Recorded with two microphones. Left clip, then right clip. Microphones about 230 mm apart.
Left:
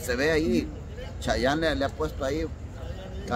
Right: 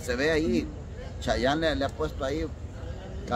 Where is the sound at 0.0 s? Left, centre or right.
Centre.